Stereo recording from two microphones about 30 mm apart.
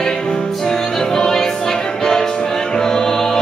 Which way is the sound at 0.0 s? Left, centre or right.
Left.